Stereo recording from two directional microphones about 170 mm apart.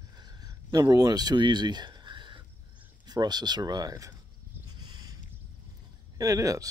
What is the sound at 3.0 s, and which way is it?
Speech, 25° right (ahead or behind).